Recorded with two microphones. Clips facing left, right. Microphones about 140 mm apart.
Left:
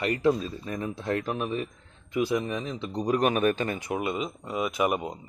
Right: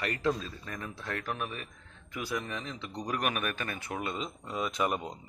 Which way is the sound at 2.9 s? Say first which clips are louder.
Left 9 dB; 25° left (ahead or behind).